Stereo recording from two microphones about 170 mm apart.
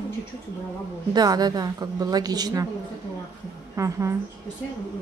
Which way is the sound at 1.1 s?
25° right (ahead or behind).